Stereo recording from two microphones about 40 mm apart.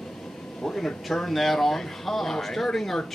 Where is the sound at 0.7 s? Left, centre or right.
Centre.